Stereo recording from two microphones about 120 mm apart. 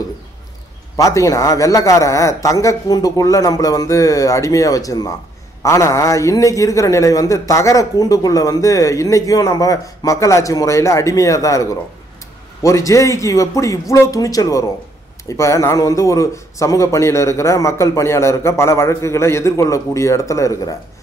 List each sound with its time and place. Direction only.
0.9 s a man's voice: 25° left (ahead or behind)